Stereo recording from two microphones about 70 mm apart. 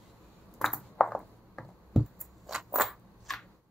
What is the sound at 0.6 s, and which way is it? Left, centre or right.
Ping, centre.